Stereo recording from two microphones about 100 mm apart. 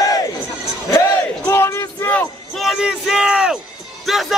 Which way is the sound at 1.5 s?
25° left (ahead or behind).